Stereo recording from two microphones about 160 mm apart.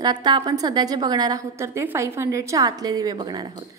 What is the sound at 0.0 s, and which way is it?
A woman's voice, 25° right (ahead or behind).